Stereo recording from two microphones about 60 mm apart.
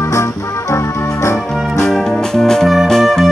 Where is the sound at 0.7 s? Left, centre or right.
Left.